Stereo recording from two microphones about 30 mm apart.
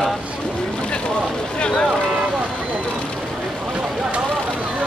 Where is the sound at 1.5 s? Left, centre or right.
Left.